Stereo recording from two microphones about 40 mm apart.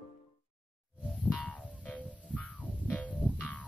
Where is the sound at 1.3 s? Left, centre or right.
Left.